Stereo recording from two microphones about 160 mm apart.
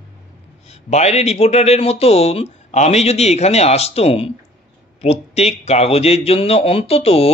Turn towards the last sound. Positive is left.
turn(degrees=40)  # may be behind; listen again after turning